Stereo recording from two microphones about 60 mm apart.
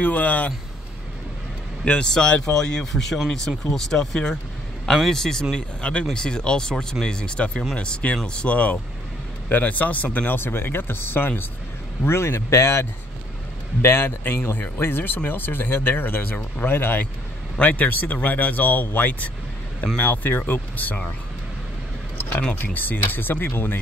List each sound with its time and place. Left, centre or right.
0.0 s speech: left
1.9 s speech: centre; by 12.8 s left
13.8 s speech: left
22.6 s speech: left